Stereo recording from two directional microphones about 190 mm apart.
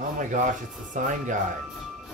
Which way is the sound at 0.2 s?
40° right (ahead or behind).